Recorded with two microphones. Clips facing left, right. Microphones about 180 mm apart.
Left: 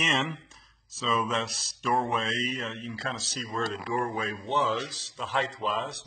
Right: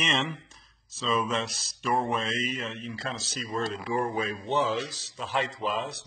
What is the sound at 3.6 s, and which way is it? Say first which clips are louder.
Speech: right 1 dB; 30° right (ahead or behind).